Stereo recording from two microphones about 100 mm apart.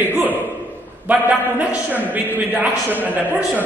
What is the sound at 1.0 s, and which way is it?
A man's voice, 20° right (ahead or behind).